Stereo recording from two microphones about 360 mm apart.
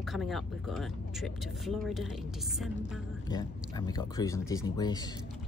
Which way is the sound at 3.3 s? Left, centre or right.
Centre.